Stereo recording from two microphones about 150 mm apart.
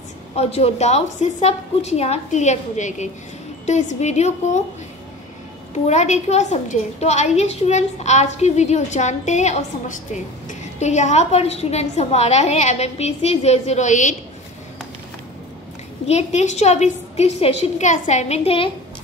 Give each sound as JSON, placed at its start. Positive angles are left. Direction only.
{"t": 0.4, "sound": "a woman's voice", "side_deg": 45}
{"t": 5.9, "sound": "a woman's voice", "side_deg": 50}
{"t": 16.1, "sound": "a woman's voice", "side_deg": 50}